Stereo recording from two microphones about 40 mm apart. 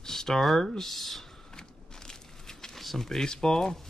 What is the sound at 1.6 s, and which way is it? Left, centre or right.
Walk, centre.